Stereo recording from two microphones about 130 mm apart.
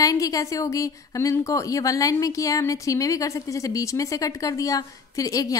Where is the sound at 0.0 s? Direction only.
25° left (ahead or behind).